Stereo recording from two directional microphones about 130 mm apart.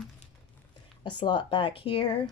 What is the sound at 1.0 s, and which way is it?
Speech, 35° left (ahead or behind).